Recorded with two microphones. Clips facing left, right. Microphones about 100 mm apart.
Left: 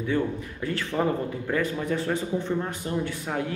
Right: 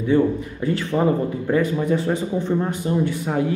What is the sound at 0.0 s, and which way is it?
Speech, 15° right (ahead or behind).